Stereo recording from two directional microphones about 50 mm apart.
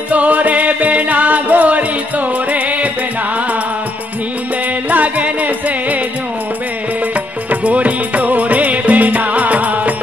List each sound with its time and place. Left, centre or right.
0.1 s music: right
4.8 s music: right
7.6 s music: right